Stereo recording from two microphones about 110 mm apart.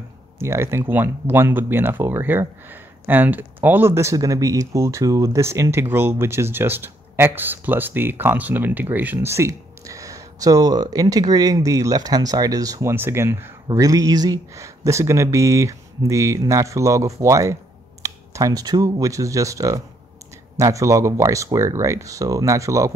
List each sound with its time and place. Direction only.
0.4 s speech: 25° right (ahead or behind)
12.9 s speech: 20° right (ahead or behind)
13.7 s speech: 35° right (ahead or behind)